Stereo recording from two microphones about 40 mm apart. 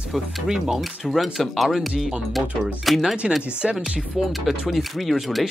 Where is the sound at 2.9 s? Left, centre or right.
Centre.